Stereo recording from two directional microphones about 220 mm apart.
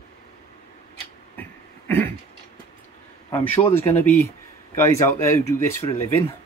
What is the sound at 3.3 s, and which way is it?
Speech, 10° left (ahead or behind).